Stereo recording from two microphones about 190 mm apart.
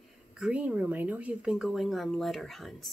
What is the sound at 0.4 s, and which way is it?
Speech, 5° right (ahead or behind).